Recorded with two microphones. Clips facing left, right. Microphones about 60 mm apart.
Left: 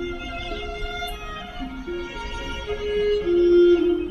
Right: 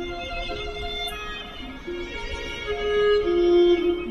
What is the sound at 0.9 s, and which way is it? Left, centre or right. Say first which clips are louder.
Music: left 1 dB; left.